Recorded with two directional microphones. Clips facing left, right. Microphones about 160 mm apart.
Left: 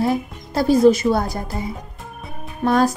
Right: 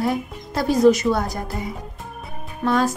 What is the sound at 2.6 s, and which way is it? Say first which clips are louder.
Speech: left 3 dB; 40° left (ahead or behind).